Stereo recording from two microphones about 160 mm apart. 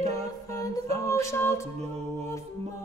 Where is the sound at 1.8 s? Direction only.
45° right (ahead or behind).